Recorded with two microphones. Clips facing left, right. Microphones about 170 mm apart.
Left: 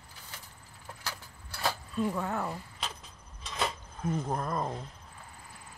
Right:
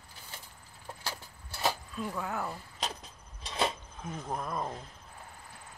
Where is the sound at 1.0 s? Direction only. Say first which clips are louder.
Right 1 dB; 25° right (ahead or behind).